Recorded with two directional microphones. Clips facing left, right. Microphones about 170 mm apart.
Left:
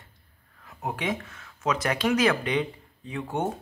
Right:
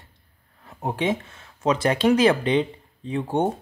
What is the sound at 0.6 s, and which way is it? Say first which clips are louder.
Speech: right 6 dB; 30° right (ahead or behind).